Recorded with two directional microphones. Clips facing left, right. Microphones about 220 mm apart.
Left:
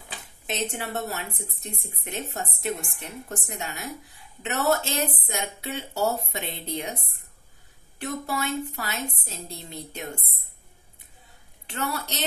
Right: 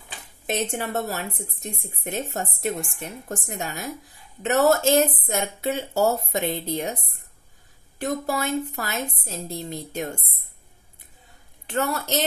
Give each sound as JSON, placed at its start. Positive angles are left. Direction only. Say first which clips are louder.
{"t": 0.5, "sound": "speech", "louder": "right 4 dB", "side_deg": -45}
{"t": 8.0, "sound": "speech", "louder": "right 4 dB", "side_deg": -40}
{"t": 11.7, "sound": "speech", "louder": "right 6 dB", "side_deg": -45}